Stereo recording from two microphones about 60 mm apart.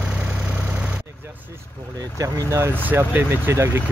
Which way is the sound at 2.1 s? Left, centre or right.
Right.